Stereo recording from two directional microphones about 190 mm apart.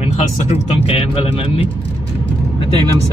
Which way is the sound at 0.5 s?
30° left (ahead or behind).